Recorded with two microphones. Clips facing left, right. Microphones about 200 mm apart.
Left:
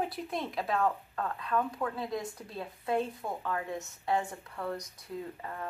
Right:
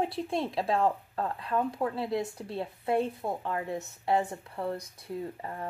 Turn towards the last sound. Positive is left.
turn(degrees=-30)  # may be behind; listen again after turning